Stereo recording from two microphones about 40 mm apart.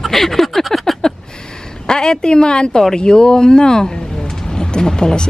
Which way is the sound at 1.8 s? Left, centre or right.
Centre.